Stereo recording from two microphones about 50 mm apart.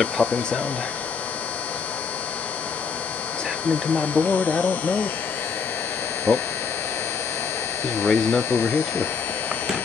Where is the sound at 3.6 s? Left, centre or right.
Left.